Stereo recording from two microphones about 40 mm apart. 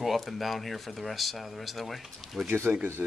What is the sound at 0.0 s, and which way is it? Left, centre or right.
Speech, centre.